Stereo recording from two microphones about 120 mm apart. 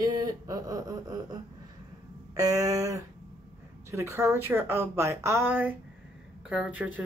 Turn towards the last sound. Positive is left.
turn(degrees=-10)  # may be behind; listen again after turning